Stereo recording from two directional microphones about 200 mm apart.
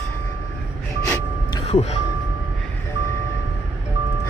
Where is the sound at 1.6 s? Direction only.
30° left (ahead or behind).